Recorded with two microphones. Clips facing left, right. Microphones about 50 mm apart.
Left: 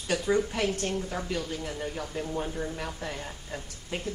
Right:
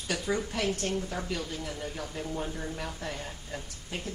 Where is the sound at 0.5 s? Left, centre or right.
Left.